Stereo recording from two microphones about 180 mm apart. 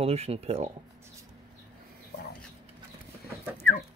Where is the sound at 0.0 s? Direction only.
35° right (ahead or behind).